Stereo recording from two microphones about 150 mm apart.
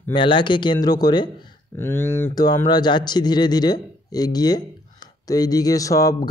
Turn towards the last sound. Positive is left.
turn(degrees=20)  # may be behind; listen again after turning